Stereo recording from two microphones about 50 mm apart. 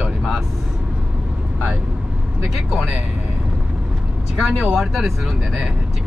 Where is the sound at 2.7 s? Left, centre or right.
Right.